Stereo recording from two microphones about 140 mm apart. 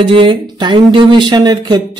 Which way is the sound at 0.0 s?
40° right (ahead or behind).